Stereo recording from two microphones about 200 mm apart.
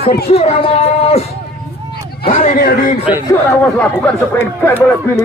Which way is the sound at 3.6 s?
5° left (ahead or behind).